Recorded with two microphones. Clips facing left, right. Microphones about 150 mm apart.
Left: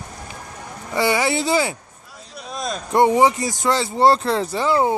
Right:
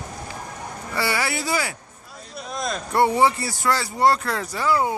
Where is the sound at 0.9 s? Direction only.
20° left (ahead or behind).